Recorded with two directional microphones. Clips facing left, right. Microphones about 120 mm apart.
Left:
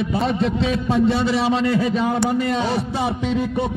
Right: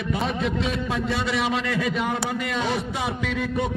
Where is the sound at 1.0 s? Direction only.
30° left (ahead or behind).